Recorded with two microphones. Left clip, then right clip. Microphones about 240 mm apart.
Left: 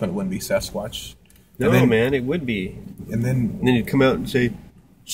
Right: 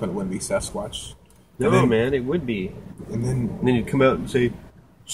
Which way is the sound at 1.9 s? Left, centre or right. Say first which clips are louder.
Left 2 dB; centre.